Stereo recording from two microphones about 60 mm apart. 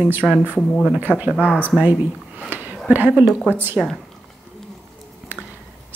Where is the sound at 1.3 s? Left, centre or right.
Left.